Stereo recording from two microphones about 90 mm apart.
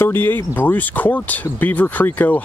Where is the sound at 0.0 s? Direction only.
25° left (ahead or behind).